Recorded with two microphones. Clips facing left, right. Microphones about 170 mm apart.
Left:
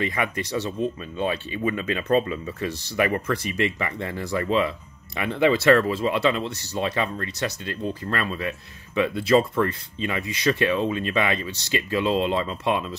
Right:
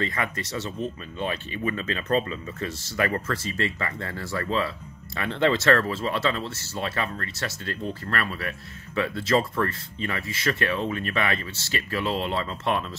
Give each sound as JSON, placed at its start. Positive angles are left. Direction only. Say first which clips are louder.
{"t": 0.0, "sound": "speech", "louder": "left 3 dB", "side_deg": 15}